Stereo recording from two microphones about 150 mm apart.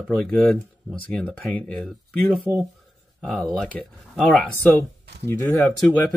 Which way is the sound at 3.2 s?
Centre (ahead or behind).